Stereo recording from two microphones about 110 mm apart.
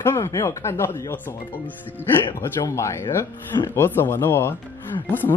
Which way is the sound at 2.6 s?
25° left (ahead or behind).